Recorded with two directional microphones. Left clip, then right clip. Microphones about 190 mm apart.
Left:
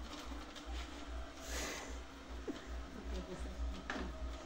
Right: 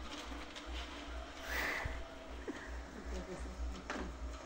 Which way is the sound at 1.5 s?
15° left (ahead or behind).